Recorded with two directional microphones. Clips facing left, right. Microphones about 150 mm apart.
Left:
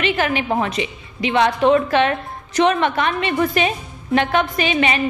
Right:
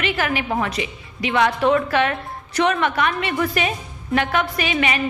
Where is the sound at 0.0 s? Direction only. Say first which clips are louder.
Left 3 dB; 25° left (ahead or behind).